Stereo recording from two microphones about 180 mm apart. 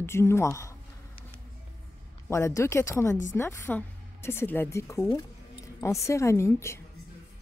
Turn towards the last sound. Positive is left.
turn(degrees=15)  # may be behind; listen again after turning